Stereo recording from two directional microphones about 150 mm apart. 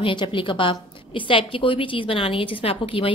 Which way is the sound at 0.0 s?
35° left (ahead or behind).